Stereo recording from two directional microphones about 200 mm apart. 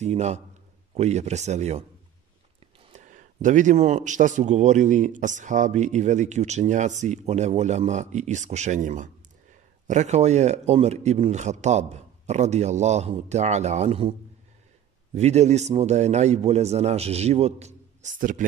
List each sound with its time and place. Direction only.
0.0 s a man's voice: 35° right (ahead or behind)
2.9 s a man's voice: 40° right (ahead or behind)
15.1 s a man's voice: 35° right (ahead or behind)